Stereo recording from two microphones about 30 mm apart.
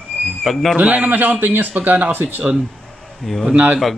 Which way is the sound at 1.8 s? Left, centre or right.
Right.